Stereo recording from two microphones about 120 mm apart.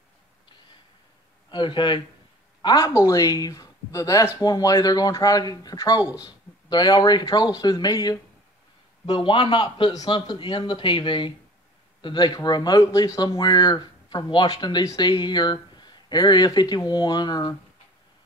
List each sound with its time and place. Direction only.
1.5 s speech: 40° left (ahead or behind)
9.0 s a man's voice: 45° left (ahead or behind)